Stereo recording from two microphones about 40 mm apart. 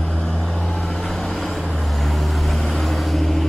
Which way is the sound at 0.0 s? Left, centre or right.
Centre.